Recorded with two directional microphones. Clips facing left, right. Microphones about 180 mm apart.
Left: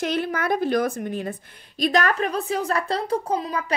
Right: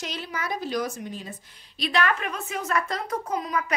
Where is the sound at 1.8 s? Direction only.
40° left (ahead or behind).